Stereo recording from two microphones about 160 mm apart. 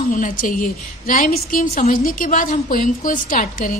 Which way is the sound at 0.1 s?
55° left (ahead or behind).